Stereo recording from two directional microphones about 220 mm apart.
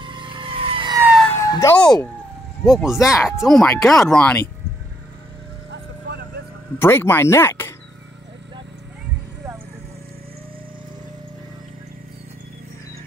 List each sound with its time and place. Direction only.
0.0 s vehicle: 20° right (ahead or behind)
1.0 s emergency vehicle: centre (ahead or behind)
1.3 s emergency vehicle: 15° left (ahead or behind)
2.6 s speech: centre (ahead or behind)
5.7 s vehicle: 50° right (ahead or behind)
6.8 s speech: 10° left (ahead or behind)